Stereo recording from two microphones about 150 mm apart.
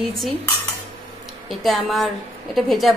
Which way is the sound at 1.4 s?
Centre (ahead or behind).